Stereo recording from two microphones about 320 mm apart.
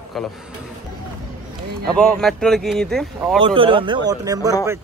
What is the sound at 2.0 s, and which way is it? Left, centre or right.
Speech, centre.